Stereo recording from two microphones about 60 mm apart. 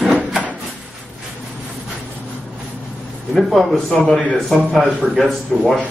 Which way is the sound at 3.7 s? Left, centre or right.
Centre.